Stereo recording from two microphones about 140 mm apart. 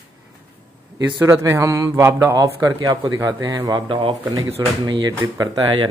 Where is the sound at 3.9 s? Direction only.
40° right (ahead or behind).